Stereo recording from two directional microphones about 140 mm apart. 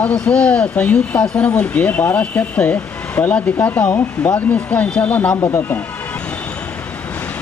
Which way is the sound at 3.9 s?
25° left (ahead or behind).